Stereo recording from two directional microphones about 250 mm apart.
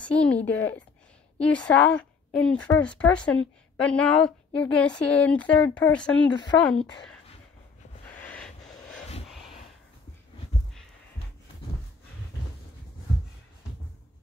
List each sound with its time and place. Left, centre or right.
0.0 s a woman's voice: centre
6.3 s speech: centre
6.6 s a woman's voice: centre
8.0 s a sound: centre